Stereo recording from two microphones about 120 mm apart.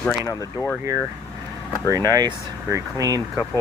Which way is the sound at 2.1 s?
30° right (ahead or behind).